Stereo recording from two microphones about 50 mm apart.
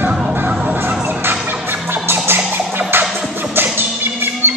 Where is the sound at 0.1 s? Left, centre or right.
Centre.